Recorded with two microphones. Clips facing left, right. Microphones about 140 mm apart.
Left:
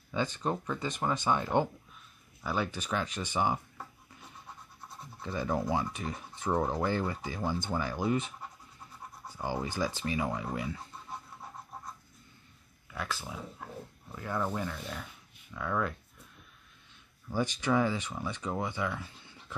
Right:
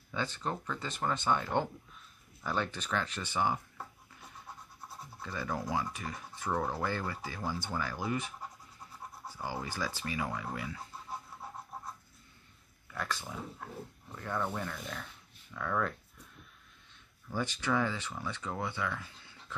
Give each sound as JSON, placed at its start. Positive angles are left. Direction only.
{"t": 0.1, "sound": "speech", "side_deg": 15}
{"t": 5.2, "sound": "speech", "side_deg": 20}
{"t": 9.4, "sound": "speech", "side_deg": 20}
{"t": 12.9, "sound": "speech", "side_deg": 5}
{"t": 17.3, "sound": "speech", "side_deg": 15}